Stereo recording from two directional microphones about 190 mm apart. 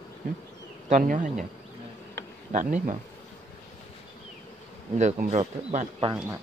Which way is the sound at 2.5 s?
40° right (ahead or behind).